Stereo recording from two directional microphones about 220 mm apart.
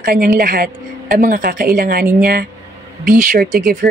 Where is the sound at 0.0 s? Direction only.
40° right (ahead or behind).